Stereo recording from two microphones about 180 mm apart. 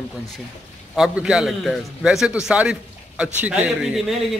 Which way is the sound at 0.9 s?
5° right (ahead or behind).